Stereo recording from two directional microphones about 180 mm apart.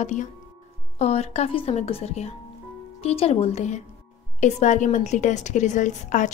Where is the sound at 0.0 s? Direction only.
40° left (ahead or behind).